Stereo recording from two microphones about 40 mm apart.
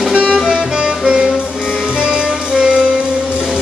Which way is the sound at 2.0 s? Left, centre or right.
Right.